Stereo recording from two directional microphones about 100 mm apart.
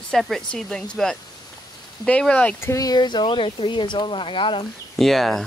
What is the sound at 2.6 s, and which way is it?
A woman's voice, 35° left (ahead or behind).